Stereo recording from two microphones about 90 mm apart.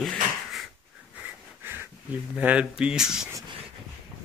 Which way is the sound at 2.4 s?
15° right (ahead or behind).